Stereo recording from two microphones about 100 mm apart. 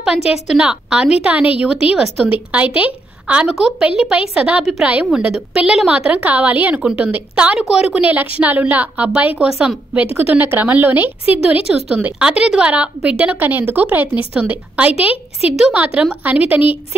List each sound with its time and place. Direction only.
0.0 s a woman's voice: 5° right (ahead or behind)
10.1 s a woman's voice: 20° right (ahead or behind)
11.4 s a woman's voice: 5° right (ahead or behind)